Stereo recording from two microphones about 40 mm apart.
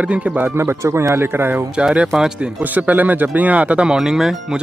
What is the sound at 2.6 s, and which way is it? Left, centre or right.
Speech, right.